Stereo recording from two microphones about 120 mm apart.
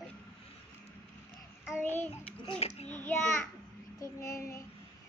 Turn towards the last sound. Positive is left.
turn(degrees=25)  # may be behind; listen again after turning